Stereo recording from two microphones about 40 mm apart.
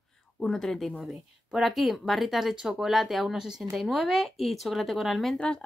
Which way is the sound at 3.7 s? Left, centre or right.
Centre.